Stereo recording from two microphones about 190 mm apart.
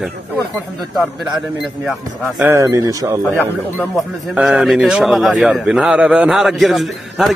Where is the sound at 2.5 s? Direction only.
15° right (ahead or behind).